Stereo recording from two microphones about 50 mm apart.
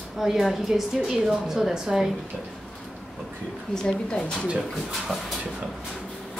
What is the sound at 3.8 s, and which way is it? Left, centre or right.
Speech, centre.